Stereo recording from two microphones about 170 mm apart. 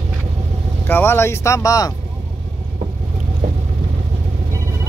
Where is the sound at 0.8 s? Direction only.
15° left (ahead or behind).